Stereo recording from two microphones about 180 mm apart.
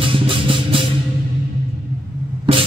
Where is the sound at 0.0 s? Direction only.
30° right (ahead or behind).